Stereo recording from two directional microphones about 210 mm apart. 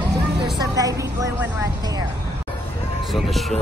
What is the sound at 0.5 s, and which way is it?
Speech, 15° right (ahead or behind).